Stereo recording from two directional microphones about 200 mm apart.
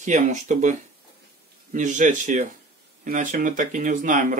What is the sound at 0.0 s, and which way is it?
Speech, 40° right (ahead or behind).